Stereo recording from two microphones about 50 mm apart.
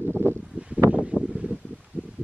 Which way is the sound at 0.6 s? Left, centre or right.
Right.